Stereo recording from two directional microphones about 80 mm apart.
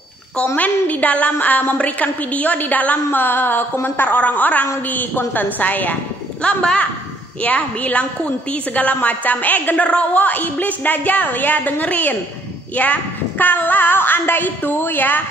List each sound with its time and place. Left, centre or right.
0.6 s a woman's voice: centre